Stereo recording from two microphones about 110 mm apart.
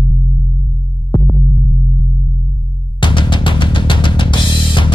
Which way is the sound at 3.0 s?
45° left (ahead or behind).